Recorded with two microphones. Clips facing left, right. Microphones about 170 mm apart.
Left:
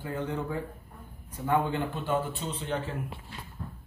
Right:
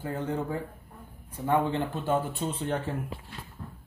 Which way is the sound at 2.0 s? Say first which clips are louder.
Right 2 dB; 50° right (ahead or behind).